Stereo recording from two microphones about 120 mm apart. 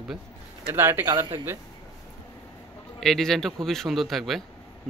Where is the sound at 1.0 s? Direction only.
30° right (ahead or behind).